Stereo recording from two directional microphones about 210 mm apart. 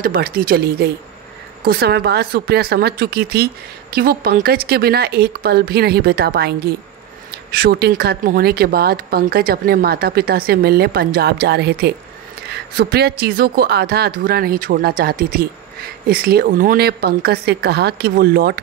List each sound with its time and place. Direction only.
0.0 s speech: 45° right (ahead or behind)
12.4 s a sound: 50° right (ahead or behind)
13.2 s speech: 45° right (ahead or behind)